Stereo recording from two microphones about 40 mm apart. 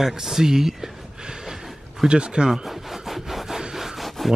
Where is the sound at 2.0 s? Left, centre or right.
Right.